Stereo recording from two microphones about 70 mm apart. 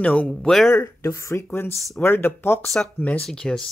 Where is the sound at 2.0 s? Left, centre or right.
Left.